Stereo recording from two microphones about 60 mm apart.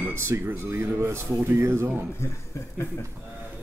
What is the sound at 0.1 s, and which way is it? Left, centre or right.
Speech, right.